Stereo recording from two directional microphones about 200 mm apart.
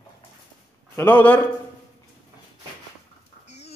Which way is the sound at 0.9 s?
10° left (ahead or behind).